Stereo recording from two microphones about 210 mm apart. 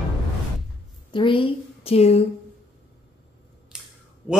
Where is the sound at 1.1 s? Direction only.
25° left (ahead or behind).